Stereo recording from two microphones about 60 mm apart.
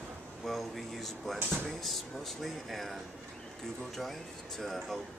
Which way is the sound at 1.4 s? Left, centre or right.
Right.